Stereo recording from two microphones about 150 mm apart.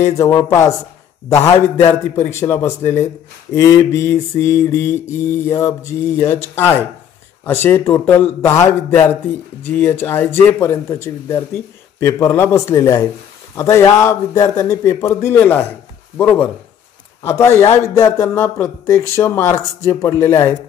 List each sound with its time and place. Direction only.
0.0 s a man's voice: 20° left (ahead or behind)